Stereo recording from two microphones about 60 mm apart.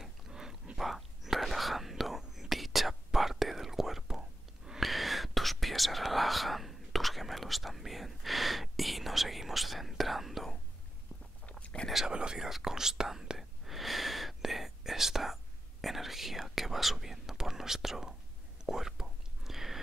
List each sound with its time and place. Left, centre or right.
0.0 s whispering: centre
11.6 s whispering: centre
11.9 s whispering: centre